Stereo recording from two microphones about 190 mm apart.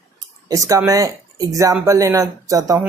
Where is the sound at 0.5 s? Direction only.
15° right (ahead or behind).